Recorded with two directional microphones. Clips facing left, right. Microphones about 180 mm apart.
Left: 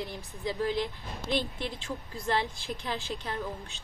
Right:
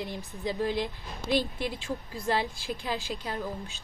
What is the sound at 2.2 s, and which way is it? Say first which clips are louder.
Speech: right 1 dB; 15° right (ahead or behind).